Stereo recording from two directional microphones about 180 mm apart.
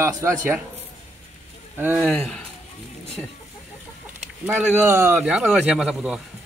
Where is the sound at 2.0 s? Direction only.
5° left (ahead or behind).